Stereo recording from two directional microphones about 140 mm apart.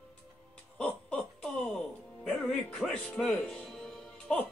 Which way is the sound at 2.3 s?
5° left (ahead or behind).